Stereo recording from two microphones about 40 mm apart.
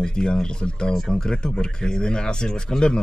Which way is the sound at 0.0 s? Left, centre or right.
Left.